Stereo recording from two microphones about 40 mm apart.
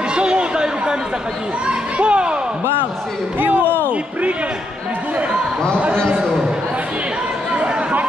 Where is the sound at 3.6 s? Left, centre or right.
Left.